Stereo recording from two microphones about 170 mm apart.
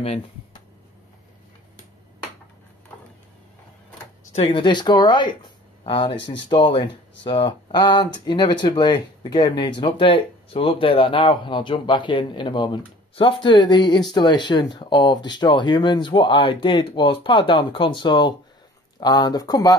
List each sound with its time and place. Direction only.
4.3 s speech: 35° left (ahead or behind)
6.1 s speech: 90° left
6.5 s speech: 30° left (ahead or behind)